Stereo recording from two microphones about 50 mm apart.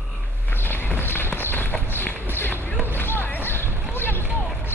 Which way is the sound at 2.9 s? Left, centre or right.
Left.